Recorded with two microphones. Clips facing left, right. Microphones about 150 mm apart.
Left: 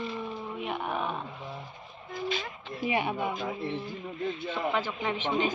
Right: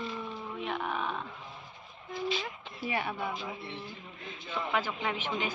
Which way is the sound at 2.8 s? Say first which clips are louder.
Left 5 dB; 15° left (ahead or behind).